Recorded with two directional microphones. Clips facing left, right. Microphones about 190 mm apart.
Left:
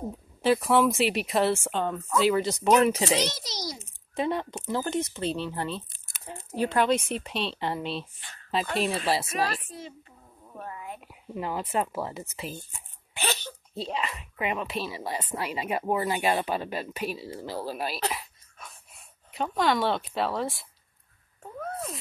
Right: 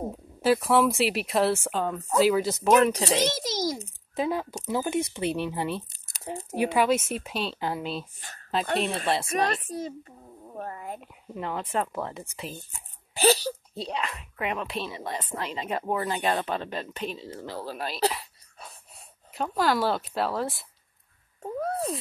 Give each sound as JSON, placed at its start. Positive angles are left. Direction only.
{"t": 0.4, "sound": "speech", "side_deg": 0}
{"t": 3.2, "sound": "a child's voice", "side_deg": -50}
{"t": 4.1, "sound": "speech", "side_deg": 0}
{"t": 9.7, "sound": "a sound", "side_deg": -40}
{"t": 11.3, "sound": "speech", "side_deg": 5}
{"t": 13.1, "sound": "a sound", "side_deg": -35}
{"t": 13.7, "sound": "speech", "side_deg": 0}
{"t": 18.6, "sound": "snort", "side_deg": -35}
{"t": 19.3, "sound": "speech", "side_deg": 0}
{"t": 21.4, "sound": "a sound", "side_deg": -35}